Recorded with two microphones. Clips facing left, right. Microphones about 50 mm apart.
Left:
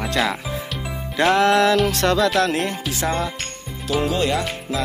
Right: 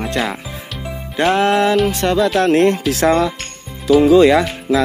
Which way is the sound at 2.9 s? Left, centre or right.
Right.